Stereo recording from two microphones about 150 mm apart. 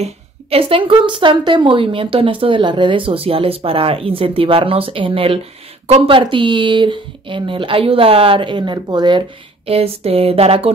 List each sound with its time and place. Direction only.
0.0 s a woman's voice: 40° right (ahead or behind)
9.7 s a woman's voice: 40° right (ahead or behind)